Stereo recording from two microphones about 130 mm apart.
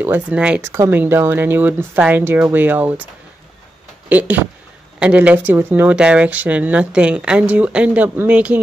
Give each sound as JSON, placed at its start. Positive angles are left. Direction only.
{"t": 0.0, "sound": "speech", "side_deg": -15}
{"t": 4.1, "sound": "speech", "side_deg": -10}